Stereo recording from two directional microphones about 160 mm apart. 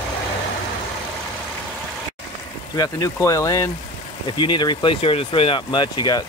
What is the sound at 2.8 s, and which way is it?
Speech, 20° left (ahead or behind).